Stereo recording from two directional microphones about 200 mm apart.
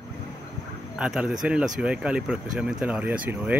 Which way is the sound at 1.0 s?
5° right (ahead or behind).